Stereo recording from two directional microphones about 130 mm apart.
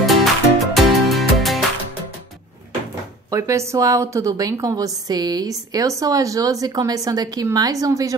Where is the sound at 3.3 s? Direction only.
25° right (ahead or behind).